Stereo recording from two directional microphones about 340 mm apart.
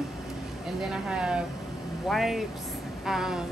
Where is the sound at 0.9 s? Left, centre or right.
Centre.